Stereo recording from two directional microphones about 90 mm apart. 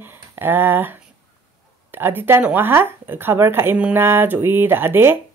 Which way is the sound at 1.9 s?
25° right (ahead or behind).